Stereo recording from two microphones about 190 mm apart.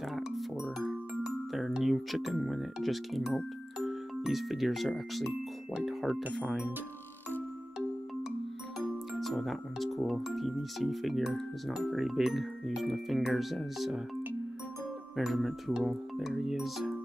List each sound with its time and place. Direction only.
0.1 s music: centre (ahead or behind)
1.5 s speech: centre (ahead or behind)
8.7 s speech: centre (ahead or behind)
15.1 s speech: centre (ahead or behind)